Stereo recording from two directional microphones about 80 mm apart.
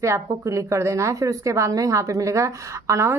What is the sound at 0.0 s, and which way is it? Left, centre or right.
A woman's voice, right.